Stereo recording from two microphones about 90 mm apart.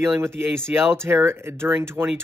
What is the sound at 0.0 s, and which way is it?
Speech, 30° right (ahead or behind).